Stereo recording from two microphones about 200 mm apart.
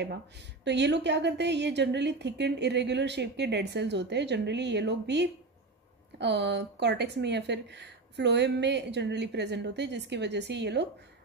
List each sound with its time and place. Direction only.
0.7 s speech: 60° right (ahead or behind)